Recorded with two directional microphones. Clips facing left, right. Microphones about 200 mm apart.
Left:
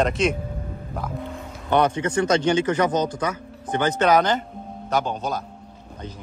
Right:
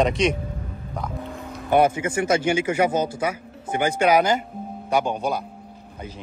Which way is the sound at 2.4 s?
10° right (ahead or behind).